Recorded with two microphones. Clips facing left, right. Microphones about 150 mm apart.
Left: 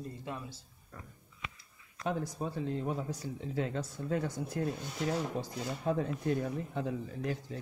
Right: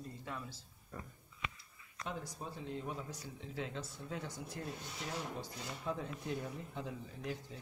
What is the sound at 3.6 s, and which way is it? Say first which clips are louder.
Speech: left 7 dB; 55° left (ahead or behind).